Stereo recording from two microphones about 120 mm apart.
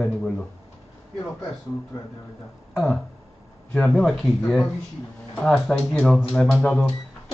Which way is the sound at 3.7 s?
10° left (ahead or behind).